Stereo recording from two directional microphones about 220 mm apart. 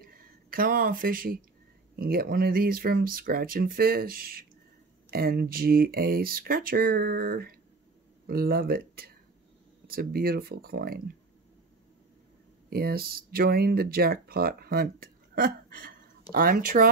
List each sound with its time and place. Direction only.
0.0 s a sound: 40° right (ahead or behind)
2.0 s speech: 45° right (ahead or behind)
12.6 s speech: 45° right (ahead or behind)